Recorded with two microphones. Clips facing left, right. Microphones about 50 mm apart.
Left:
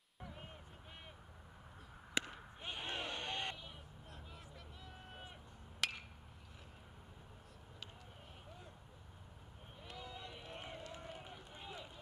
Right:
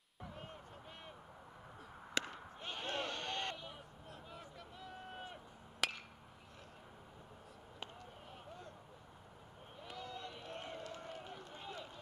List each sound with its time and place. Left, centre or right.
2.3 s a sound: centre
3.5 s vehicle: centre
9.8 s run: centre